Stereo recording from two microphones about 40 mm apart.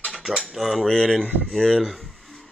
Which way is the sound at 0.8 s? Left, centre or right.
Centre.